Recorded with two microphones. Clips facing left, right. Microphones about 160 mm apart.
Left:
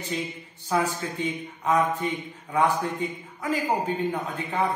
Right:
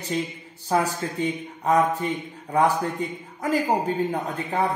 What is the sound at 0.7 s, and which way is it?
Speech, 40° right (ahead or behind).